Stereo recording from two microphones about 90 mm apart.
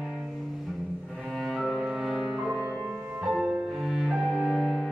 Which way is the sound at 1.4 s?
Centre (ahead or behind).